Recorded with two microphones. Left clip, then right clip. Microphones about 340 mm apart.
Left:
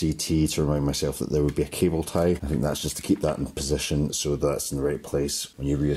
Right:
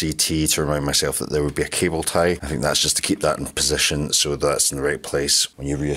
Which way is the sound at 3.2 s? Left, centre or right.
Right.